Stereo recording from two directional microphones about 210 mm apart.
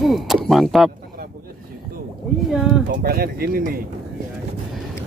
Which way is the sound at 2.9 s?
45° right (ahead or behind).